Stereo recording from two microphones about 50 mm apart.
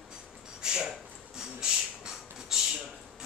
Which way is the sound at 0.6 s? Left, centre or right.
Centre.